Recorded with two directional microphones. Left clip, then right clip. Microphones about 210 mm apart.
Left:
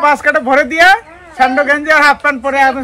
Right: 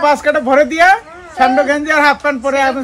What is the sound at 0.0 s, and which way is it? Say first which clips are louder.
A man's voice: left 1 dB; centre (ahead or behind).